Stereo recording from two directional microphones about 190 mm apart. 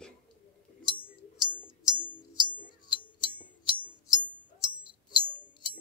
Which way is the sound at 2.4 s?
25° left (ahead or behind).